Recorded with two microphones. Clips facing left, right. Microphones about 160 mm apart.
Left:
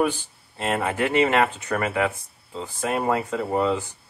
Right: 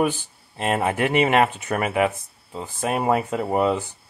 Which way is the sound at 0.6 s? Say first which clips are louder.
Right 2 dB; 20° right (ahead or behind).